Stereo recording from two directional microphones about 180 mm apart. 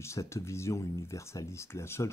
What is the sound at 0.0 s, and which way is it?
Speech, 15° left (ahead or behind).